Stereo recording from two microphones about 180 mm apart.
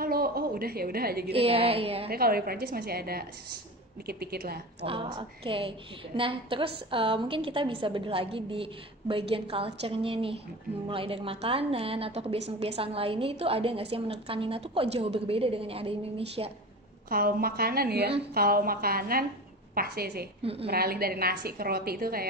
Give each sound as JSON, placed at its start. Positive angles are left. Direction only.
{"t": 0.0, "sound": "a woman's voice", "side_deg": -55}
{"t": 1.3, "sound": "a woman's voice", "side_deg": -35}
{"t": 2.0, "sound": "a woman's voice", "side_deg": -55}
{"t": 4.8, "sound": "a woman's voice", "side_deg": -30}
{"t": 17.1, "sound": "a woman's voice", "side_deg": -55}